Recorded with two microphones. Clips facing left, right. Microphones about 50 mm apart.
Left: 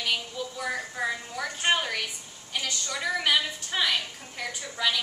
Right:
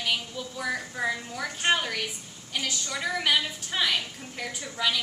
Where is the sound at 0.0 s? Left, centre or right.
Centre.